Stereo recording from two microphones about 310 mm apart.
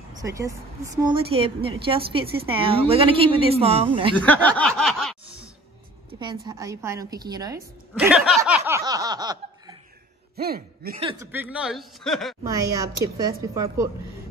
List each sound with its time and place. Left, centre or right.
0.2 s a woman's voice: centre
4.2 s snicker: centre
6.1 s a woman's voice: centre
10.3 s a man's voice: right
11.0 s a woman's voice: centre
11.3 s speech: centre
12.7 s a woman's voice: centre